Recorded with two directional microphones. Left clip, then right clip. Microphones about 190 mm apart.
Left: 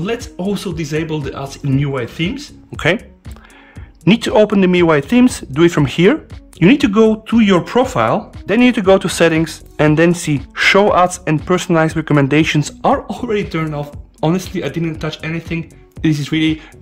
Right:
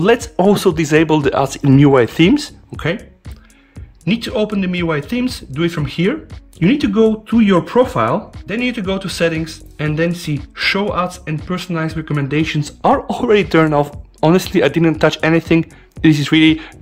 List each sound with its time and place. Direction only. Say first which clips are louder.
0.0 s speech: right 9 dB; 20° right (ahead or behind)
2.7 s speech: left 6 dB; 10° left (ahead or behind)
4.0 s speech: left 7 dB; 20° left (ahead or behind)
8.5 s speech: left 10 dB; 25° left (ahead or behind)
12.8 s speech: right 3 dB; 5° right (ahead or behind)